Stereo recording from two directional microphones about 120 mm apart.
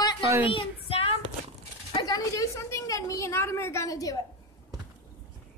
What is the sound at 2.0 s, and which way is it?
A woman's voice, 30° left (ahead or behind).